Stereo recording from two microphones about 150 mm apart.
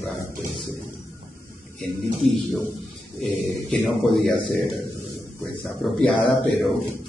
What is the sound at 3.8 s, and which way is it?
Speech, centre (ahead or behind).